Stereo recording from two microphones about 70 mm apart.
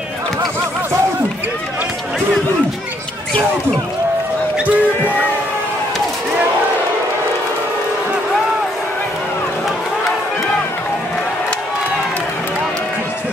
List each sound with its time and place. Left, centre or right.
4.6 s speech: right